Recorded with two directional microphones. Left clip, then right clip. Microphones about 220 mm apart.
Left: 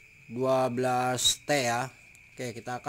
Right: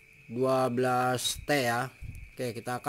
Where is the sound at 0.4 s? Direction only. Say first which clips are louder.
Left 1 dB; centre (ahead or behind).